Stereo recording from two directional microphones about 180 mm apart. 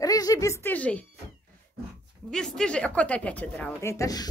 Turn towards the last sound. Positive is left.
turn(degrees=20)  # may be behind; listen again after turning